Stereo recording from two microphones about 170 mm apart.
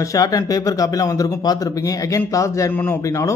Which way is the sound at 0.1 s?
20° left (ahead or behind).